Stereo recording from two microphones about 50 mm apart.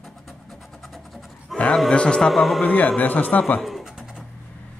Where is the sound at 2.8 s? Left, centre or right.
Left.